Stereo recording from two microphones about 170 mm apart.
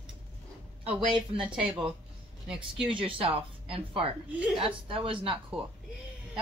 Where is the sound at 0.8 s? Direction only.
30° right (ahead or behind).